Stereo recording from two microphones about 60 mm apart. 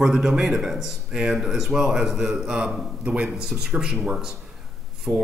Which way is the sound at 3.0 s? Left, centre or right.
Right.